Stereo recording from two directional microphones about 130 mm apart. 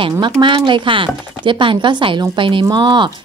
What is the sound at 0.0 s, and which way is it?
Speech, 40° right (ahead or behind).